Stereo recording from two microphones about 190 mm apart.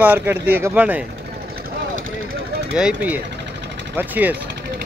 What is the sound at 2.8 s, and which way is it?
Speech, 5° right (ahead or behind).